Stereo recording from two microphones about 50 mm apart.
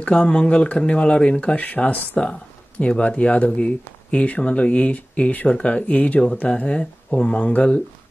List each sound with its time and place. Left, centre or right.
0.0 s speech: left